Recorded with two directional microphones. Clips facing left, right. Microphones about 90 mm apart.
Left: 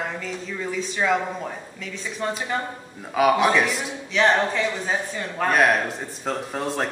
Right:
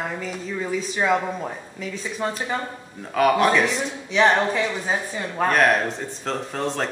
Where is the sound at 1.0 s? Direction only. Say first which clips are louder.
Right 1 dB; 20° right (ahead or behind).